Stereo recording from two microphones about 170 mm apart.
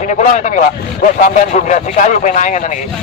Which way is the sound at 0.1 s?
45° left (ahead or behind).